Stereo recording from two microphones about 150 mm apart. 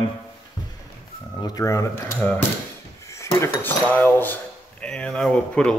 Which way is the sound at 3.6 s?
15° left (ahead or behind).